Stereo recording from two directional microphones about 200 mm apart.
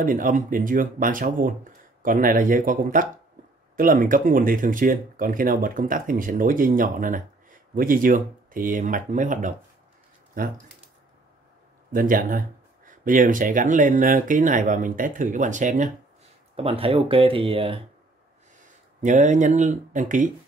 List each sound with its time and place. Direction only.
0.0 s speech: 45° right (ahead or behind)
11.9 s speech: 45° right (ahead or behind); by 17.7 s 25° right (ahead or behind)
19.0 s speech: 35° right (ahead or behind)